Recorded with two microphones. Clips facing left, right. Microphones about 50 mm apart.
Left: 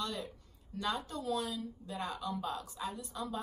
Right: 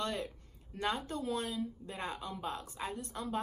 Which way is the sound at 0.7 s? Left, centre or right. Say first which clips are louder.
Right 1 dB; right.